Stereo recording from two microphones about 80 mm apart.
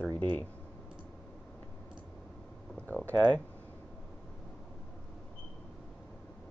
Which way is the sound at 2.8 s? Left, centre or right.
Centre.